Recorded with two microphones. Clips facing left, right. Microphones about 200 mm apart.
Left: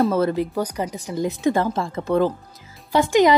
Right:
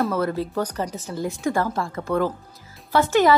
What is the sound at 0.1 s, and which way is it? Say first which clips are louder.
A woman's voice: left 3 dB; 20° left (ahead or behind).